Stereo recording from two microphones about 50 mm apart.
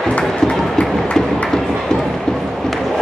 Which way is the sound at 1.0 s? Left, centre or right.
Left.